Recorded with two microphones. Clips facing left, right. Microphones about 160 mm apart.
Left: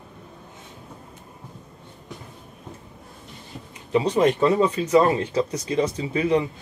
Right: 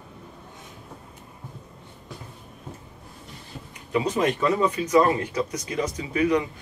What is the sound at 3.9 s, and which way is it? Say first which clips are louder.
Speech: left 4 dB; 30° left (ahead or behind).